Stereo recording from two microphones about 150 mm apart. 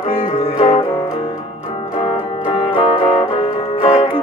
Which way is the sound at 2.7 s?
35° left (ahead or behind).